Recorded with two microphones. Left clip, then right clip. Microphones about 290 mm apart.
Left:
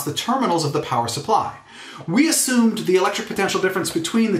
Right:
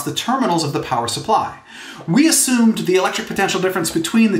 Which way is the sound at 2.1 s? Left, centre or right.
Right.